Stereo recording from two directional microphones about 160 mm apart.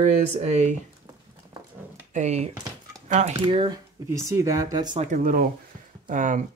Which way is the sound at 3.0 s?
50° right (ahead or behind).